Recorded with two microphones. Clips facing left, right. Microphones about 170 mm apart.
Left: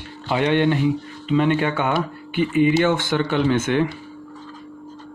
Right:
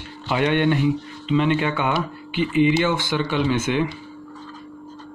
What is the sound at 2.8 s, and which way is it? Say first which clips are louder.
Speech: left 2 dB; 55° left (ahead or behind).